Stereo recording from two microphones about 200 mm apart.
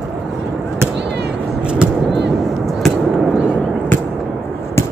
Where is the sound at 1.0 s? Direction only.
60° right (ahead or behind).